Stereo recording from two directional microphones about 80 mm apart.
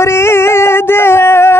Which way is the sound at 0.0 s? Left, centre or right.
Left.